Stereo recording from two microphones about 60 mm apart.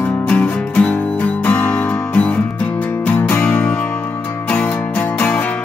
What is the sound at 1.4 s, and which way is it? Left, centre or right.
Music, left.